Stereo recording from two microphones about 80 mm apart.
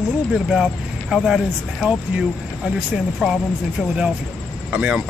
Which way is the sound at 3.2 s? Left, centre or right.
Centre.